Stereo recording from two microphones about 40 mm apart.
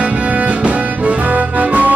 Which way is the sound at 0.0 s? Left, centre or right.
Right.